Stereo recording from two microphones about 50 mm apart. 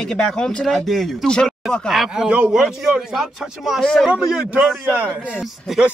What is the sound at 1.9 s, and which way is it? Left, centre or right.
Speech, centre.